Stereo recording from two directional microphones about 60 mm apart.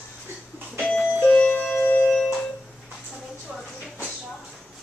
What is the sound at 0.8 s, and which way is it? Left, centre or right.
Doorbell, left.